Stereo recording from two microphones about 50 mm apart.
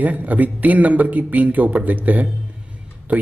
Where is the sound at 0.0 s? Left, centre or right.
Right.